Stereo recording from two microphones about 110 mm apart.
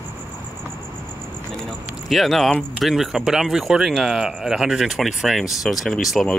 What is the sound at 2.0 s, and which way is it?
Speech, centre (ahead or behind).